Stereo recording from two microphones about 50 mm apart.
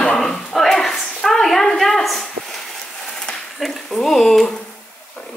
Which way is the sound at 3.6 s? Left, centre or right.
Centre.